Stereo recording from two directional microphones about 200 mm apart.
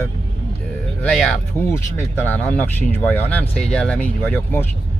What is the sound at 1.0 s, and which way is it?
Speech, 5° left (ahead or behind).